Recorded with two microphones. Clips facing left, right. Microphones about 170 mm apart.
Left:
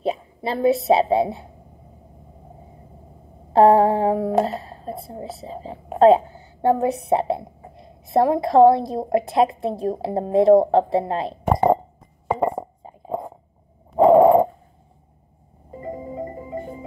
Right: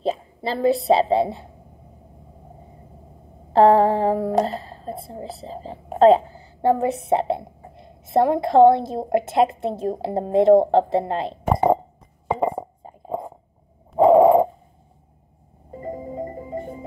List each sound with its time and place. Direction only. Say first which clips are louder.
0.5 s a woman's voice: left 1 dB; centre (ahead or behind)
3.5 s a woman's voice: left 1 dB; centre (ahead or behind)
12.3 s a sound: left 1 dB; centre (ahead or behind)
15.8 s marimba: even; centre (ahead or behind)